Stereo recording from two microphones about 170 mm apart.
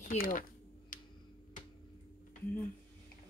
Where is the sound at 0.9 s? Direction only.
50° left (ahead or behind).